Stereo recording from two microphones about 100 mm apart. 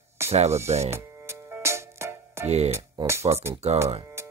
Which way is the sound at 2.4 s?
90° right.